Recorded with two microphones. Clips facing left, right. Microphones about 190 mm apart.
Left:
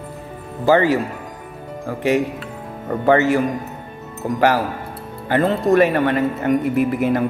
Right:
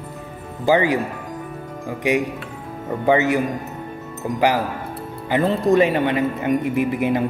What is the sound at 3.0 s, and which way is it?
Speech, 15° right (ahead or behind).